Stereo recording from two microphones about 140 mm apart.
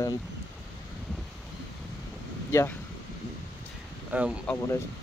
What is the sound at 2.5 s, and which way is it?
Speech, 20° left (ahead or behind).